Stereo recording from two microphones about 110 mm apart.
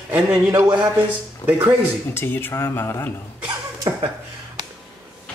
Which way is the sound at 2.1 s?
20° left (ahead or behind).